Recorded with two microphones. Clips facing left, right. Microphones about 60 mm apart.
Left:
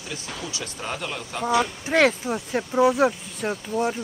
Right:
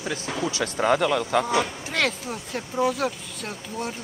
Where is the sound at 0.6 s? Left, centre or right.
Right.